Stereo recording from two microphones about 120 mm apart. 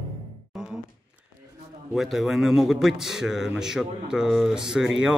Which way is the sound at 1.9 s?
Centre (ahead or behind).